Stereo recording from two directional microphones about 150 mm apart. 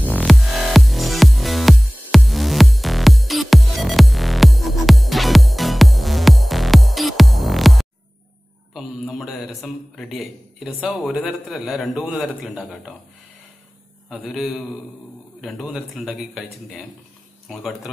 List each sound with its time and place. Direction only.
0.2 s music: centre (ahead or behind)
8.7 s a man's voice: centre (ahead or behind)
14.3 s speech: centre (ahead or behind)